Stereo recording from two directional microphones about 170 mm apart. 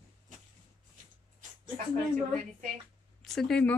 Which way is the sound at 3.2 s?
Centre (ahead or behind).